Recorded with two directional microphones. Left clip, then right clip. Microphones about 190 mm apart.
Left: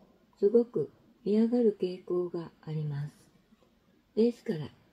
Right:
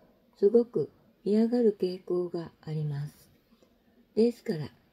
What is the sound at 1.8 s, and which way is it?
Speech, 5° right (ahead or behind).